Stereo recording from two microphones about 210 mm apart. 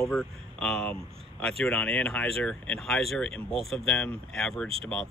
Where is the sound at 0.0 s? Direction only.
5° left (ahead or behind).